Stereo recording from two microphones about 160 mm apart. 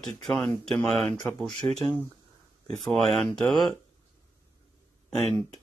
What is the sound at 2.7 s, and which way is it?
Speech, centre (ahead or behind).